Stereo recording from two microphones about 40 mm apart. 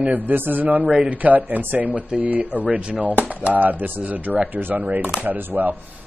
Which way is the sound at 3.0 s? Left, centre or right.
Right.